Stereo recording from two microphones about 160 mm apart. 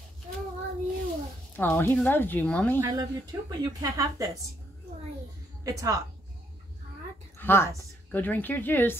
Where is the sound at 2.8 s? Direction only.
25° right (ahead or behind).